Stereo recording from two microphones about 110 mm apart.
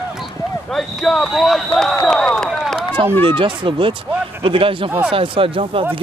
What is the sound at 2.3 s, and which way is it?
Run, centre (ahead or behind).